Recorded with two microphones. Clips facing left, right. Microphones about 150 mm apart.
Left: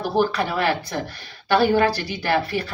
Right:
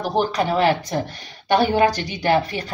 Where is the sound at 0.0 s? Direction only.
15° right (ahead or behind).